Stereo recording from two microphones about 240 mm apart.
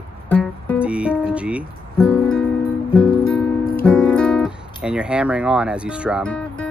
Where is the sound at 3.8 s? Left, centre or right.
Centre.